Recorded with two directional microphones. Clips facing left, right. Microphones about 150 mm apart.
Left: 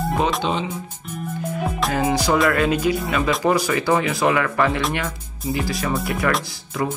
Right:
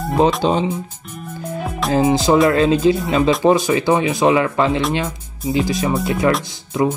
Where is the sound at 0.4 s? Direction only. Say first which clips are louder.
Right 6 dB; 35° right (ahead or behind).